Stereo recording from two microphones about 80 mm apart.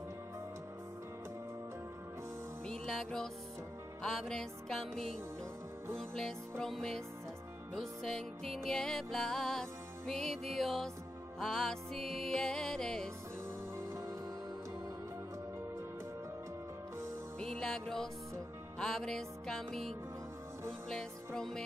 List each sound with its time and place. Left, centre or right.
2.6 s music: centre
13.7 s music: right
17.4 s music: centre
21.4 s music: centre